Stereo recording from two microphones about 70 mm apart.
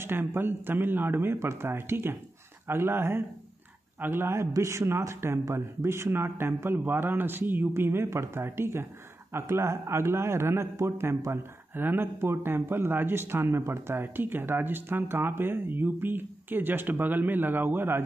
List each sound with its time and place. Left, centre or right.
0.0 s a man's voice: right